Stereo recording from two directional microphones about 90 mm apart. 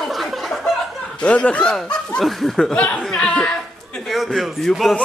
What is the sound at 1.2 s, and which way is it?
Speech, 15° left (ahead or behind).